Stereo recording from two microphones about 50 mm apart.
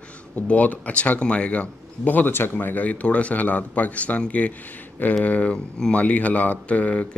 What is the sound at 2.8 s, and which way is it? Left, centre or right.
Speech, left.